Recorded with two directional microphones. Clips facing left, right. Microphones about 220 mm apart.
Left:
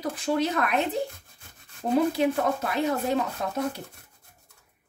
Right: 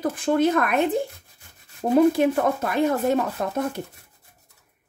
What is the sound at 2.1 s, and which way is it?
A woman's voice, 50° right (ahead or behind).